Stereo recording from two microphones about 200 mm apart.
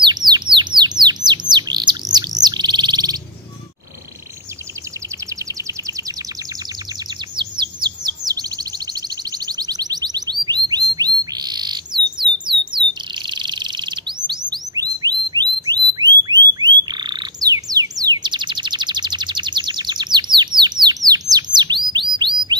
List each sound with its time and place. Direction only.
0.0 s bird: 20° right (ahead or behind)
5.3 s a sound: 15° right (ahead or behind)
7.1 s chirp: 20° right (ahead or behind)
12.7 s bird: 25° right (ahead or behind)